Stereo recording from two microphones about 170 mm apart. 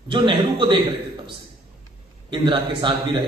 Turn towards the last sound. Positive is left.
turn(degrees=-30)  # may be behind; listen again after turning